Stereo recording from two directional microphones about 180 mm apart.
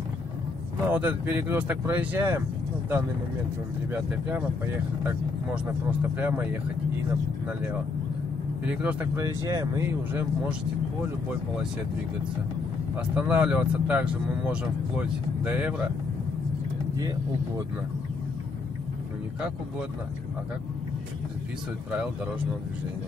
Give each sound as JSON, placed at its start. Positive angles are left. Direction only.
{"t": 0.8, "sound": "speech", "side_deg": -10}
{"t": 5.0, "sound": "speech", "side_deg": -10}
{"t": 8.6, "sound": "speech", "side_deg": -10}
{"t": 12.9, "sound": "speech", "side_deg": -5}